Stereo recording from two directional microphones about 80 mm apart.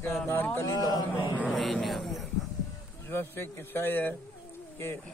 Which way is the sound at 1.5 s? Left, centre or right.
Centre.